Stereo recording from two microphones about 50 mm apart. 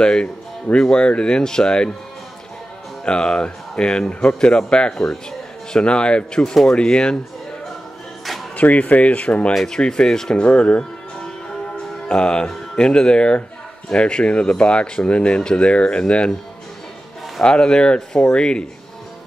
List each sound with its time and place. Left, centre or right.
0.0 s speech: centre
3.1 s speech: centre
8.5 s speech: left
9.5 s speech: centre
9.8 s speech: centre
17.4 s speech: centre